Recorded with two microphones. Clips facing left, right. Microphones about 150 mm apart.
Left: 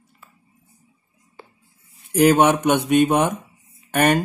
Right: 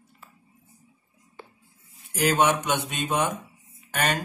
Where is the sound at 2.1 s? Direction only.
60° left (ahead or behind).